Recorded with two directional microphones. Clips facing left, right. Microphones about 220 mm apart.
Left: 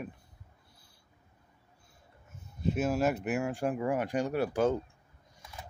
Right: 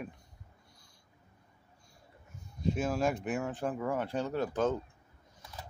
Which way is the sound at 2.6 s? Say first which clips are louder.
Left 2 dB; 5° left (ahead or behind).